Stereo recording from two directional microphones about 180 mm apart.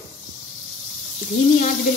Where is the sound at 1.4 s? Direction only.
50° left (ahead or behind).